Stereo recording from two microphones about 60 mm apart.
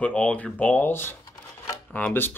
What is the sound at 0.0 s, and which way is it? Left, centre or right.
Speech, left.